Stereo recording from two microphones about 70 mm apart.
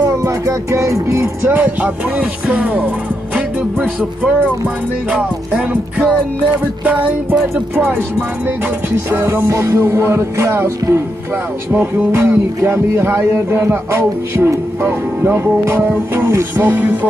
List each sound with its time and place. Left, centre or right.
0.2 s speech: right
1.6 s speech: right
4.2 s speech: right
8.9 s music: right
16.6 s speech: right